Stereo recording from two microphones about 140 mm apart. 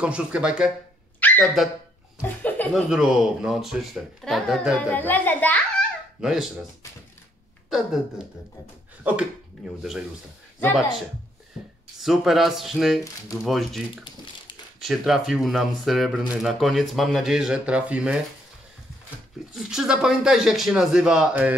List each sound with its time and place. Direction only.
0.0 s speech: 5° right (ahead or behind)
1.2 s dog: 15° left (ahead or behind)
2.2 s laughter: 10° left (ahead or behind)
2.7 s speech: 5° right (ahead or behind)
4.7 s a child's voice: 10° left (ahead or behind)
6.2 s speech: 5° right (ahead or behind)
7.7 s speech: 5° right (ahead or behind)
12.0 s speech: centre (ahead or behind)
14.8 s speech: centre (ahead or behind)
19.5 s speech: 5° right (ahead or behind)